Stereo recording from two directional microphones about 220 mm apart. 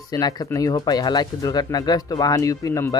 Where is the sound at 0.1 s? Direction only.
15° left (ahead or behind).